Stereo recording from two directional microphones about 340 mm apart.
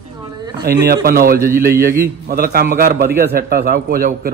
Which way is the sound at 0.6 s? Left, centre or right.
Right.